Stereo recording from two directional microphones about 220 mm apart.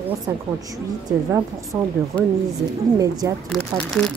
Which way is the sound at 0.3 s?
10° right (ahead or behind).